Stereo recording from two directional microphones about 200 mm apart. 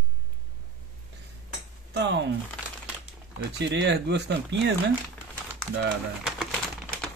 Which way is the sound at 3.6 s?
60° right (ahead or behind).